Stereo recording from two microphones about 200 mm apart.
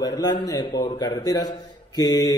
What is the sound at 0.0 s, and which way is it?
A man's voice, 20° left (ahead or behind).